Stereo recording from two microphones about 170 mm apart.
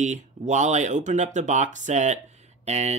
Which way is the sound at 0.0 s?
45° right (ahead or behind).